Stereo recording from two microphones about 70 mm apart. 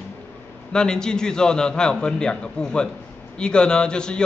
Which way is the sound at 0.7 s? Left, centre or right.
Centre.